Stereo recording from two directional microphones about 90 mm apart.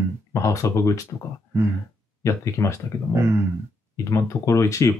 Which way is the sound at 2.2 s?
35° left (ahead or behind).